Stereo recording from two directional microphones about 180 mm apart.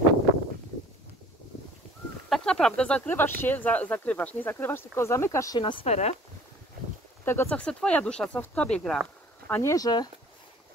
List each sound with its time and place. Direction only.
2.2 s speech: centre (ahead or behind); by 6.1 s 35° left (ahead or behind)
7.2 s speech: 10° left (ahead or behind)
9.5 s speech: 15° left (ahead or behind)